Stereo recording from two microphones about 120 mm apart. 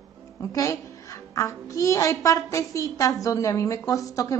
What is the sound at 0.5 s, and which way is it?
A woman's voice, 25° left (ahead or behind).